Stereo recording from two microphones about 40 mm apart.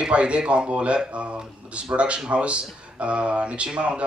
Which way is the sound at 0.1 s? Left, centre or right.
Right.